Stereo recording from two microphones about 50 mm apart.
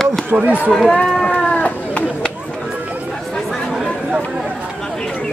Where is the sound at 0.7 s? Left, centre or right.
Centre.